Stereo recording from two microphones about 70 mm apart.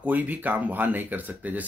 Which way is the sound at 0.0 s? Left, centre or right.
Right.